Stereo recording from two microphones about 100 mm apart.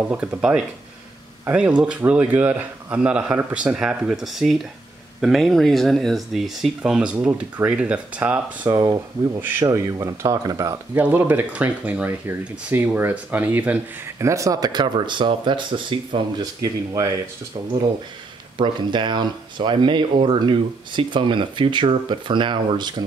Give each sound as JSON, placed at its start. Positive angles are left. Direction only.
{"t": 0.1, "sound": "speech", "side_deg": -15}
{"t": 0.4, "sound": "speech", "side_deg": -5}
{"t": 8.6, "sound": "speech", "side_deg": -35}
{"t": 9.4, "sound": "speech", "side_deg": -20}
{"t": 9.7, "sound": "speech", "side_deg": -35}
{"t": 11.0, "sound": "speech", "side_deg": -20}
{"t": 14.2, "sound": "speech", "side_deg": -30}
{"t": 16.6, "sound": "speech", "side_deg": -35}
{"t": 18.6, "sound": "speech", "side_deg": -50}